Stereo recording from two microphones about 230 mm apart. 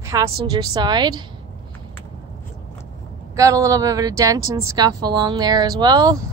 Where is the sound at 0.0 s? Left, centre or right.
Centre.